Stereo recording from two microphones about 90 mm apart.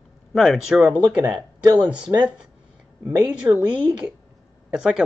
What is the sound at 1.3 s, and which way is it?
Speech, 50° right (ahead or behind).